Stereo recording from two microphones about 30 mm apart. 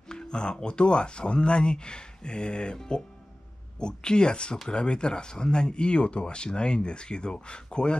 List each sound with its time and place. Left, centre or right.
0.1 s speech: left
3.8 s speech: left